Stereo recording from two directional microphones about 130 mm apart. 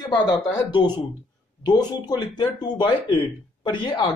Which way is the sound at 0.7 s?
35° left (ahead or behind).